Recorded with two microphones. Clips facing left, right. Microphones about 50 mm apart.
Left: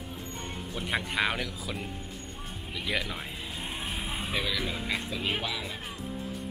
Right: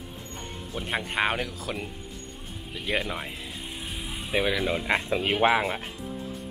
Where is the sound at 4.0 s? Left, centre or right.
Centre.